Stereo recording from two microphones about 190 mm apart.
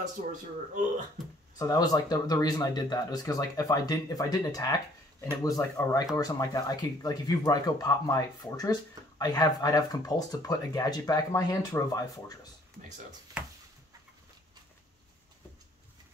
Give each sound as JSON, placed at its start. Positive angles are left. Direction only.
{"t": 0.0, "sound": "speech", "side_deg": -40}
{"t": 1.6, "sound": "speech", "side_deg": 20}